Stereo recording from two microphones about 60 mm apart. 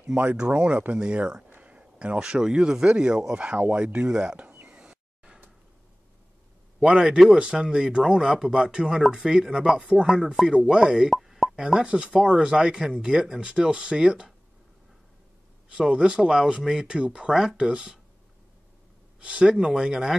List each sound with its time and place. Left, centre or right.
0.2 s speech: right
6.8 s speech: centre
11.1 s plop: centre
11.5 s speech: centre
15.7 s speech: centre
19.1 s speech: centre